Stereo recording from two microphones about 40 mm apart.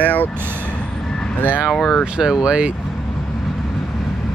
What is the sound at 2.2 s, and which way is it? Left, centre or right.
Speech, right.